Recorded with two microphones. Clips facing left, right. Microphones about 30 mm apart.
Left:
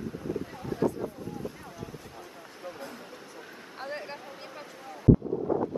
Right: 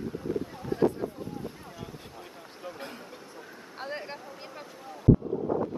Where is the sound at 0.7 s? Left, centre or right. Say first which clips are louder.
Right 3 dB; right.